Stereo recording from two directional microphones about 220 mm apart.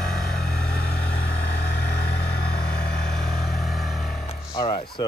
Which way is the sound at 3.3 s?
Centre (ahead or behind).